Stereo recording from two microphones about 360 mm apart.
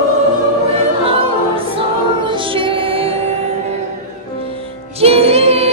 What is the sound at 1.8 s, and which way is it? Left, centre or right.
Music, centre.